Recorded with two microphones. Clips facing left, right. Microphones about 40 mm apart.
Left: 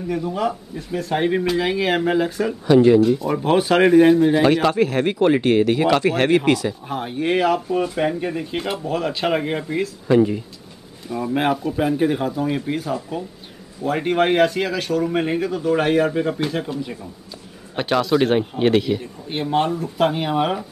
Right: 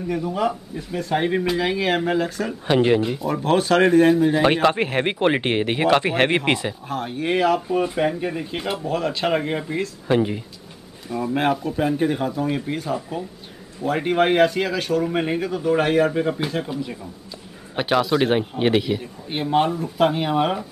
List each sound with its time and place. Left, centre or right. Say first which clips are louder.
0.0 s speech: even; centre
2.6 s speech: left 5 dB; right
3.3 s speech: left 1 dB; centre
4.6 s speech: left 1 dB; right
6.9 s speech: left 1 dB; centre
10.0 s speech: left 4 dB; centre
11.1 s speech: left 1 dB; centre